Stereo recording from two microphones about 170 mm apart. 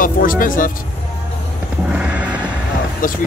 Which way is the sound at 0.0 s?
55° left (ahead or behind).